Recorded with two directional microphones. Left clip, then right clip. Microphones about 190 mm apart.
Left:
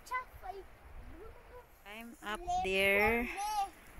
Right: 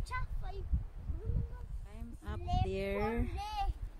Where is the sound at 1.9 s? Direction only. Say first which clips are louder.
Left 9 dB; 5° left (ahead or behind).